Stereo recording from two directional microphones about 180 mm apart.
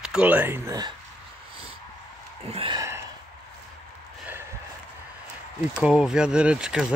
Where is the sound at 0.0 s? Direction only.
5° right (ahead or behind).